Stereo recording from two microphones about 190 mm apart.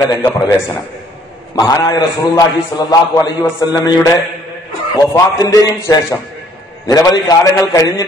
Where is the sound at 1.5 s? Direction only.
20° left (ahead or behind).